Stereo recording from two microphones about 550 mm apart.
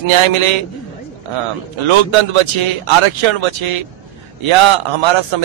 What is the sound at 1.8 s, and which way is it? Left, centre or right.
A man's voice, right.